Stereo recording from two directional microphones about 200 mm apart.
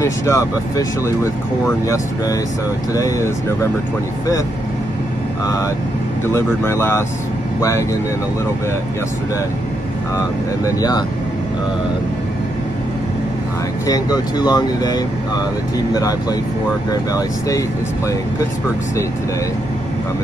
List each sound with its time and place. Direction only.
0.0 s speech: 15° left (ahead or behind)
2.9 s speech: 15° left (ahead or behind)
6.2 s speech: 10° left (ahead or behind)
10.1 s speech: 15° left (ahead or behind)
13.8 s speech: 20° left (ahead or behind)